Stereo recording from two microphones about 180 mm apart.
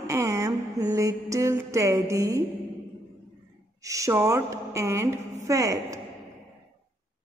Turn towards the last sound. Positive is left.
turn(degrees=-20)  # may be behind; listen again after turning